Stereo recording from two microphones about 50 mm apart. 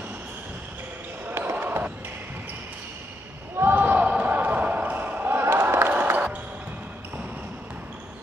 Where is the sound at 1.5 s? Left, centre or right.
Right.